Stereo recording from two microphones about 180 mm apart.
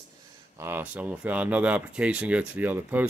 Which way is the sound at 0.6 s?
10° right (ahead or behind).